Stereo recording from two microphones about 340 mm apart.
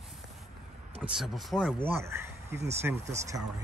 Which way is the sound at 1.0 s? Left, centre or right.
Centre.